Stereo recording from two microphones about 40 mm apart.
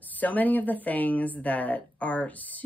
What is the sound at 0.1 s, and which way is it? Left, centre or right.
Speech, left.